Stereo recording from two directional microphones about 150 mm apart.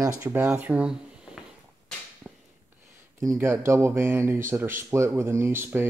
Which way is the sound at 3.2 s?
20° right (ahead or behind).